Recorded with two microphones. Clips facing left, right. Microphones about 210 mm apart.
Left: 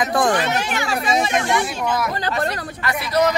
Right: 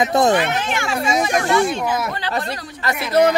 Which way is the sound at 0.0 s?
25° right (ahead or behind).